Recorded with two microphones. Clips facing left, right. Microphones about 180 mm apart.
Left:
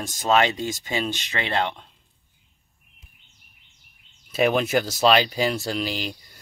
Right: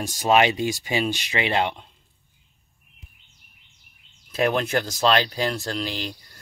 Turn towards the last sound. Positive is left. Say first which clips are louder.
# left 2 dB
turn(degrees=5)  # may be behind; listen again after turning